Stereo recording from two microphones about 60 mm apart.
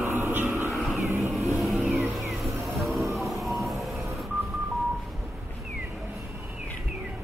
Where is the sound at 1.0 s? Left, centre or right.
Right.